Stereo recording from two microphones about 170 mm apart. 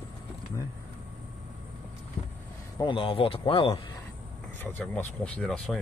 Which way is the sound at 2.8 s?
30° left (ahead or behind).